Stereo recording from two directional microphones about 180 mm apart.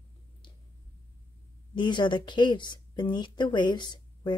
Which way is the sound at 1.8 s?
25° left (ahead or behind).